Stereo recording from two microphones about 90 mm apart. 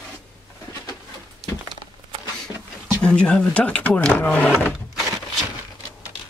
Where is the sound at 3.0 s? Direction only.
10° left (ahead or behind).